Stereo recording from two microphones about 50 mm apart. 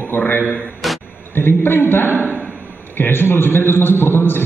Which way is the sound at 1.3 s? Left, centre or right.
Left.